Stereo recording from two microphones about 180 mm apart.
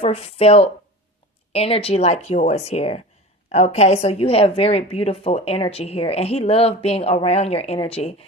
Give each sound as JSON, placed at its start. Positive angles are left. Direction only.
{"t": 0.0, "sound": "a woman's voice", "side_deg": 35}